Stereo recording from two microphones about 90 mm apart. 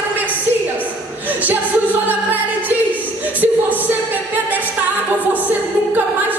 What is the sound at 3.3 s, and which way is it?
Music, 20° right (ahead or behind).